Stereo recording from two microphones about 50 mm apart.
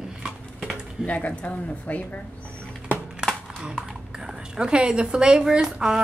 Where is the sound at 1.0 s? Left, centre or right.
Left.